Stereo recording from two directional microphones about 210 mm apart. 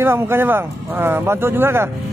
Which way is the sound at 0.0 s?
10° right (ahead or behind).